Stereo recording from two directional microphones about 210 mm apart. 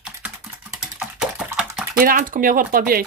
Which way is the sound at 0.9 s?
5° right (ahead or behind).